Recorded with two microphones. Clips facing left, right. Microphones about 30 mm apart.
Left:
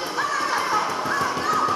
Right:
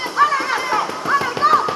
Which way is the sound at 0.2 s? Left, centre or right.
Right.